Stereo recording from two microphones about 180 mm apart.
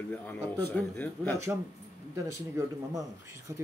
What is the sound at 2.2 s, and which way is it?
Speech, 15° right (ahead or behind).